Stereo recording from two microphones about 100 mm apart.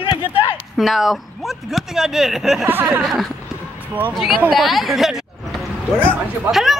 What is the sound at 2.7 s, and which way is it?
Speech, 20° right (ahead or behind).